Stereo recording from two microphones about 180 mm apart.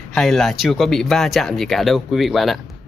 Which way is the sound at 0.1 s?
Centre (ahead or behind).